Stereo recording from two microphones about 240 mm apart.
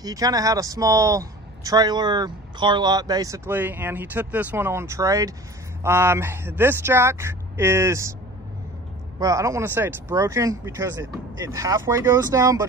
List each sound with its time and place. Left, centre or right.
0.0 s speech: centre
9.2 s speech: centre